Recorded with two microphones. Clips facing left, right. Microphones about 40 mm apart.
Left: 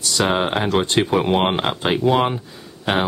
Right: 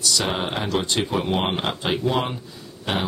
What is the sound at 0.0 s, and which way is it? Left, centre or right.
Speech, left.